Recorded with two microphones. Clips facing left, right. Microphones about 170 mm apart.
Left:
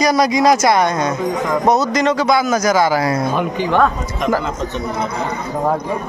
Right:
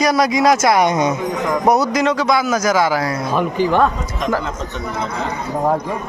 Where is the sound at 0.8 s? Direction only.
15° right (ahead or behind).